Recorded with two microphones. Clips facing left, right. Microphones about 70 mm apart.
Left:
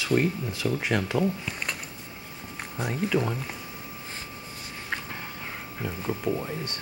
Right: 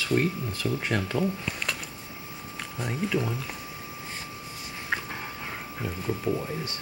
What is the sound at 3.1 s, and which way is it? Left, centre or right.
Speech, centre.